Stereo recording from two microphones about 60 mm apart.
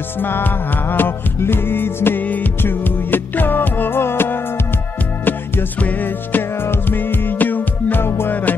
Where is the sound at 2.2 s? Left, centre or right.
Left.